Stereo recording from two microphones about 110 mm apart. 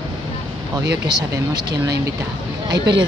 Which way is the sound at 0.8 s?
40° right (ahead or behind).